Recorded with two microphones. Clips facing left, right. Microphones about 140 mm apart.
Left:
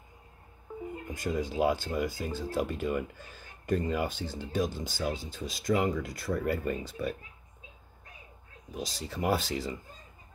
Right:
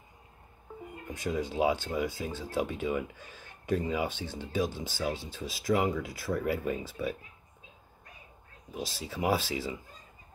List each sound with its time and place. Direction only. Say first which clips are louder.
1.1 s speech: even; centre (ahead or behind)
8.7 s speech: even; centre (ahead or behind)